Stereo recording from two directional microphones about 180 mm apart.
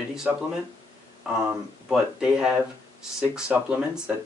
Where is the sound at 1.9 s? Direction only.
5° right (ahead or behind).